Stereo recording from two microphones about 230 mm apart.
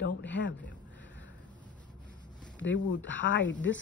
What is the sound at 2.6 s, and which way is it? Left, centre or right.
Speech, left.